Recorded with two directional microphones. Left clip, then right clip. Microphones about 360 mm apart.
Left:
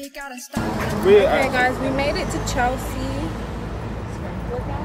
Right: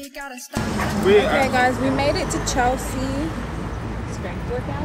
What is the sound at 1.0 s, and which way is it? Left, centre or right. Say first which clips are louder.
Speech: left 2 dB; left.